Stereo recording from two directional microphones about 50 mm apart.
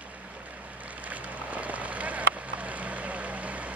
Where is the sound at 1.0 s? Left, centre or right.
Right.